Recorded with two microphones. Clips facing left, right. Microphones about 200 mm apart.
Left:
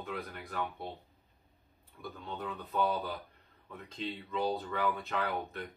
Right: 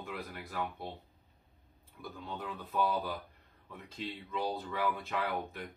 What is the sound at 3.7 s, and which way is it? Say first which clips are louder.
Speech: left 2 dB; 5° right (ahead or behind).